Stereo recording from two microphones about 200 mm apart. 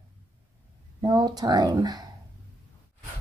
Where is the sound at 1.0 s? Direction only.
20° right (ahead or behind).